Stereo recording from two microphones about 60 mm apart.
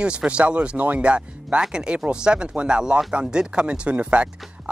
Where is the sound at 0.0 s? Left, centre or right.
Centre.